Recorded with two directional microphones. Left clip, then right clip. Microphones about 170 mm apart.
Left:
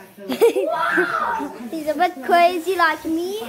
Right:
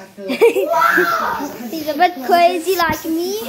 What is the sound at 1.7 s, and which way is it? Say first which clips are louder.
A child's voice: right 4 dB; 15° left (ahead or behind).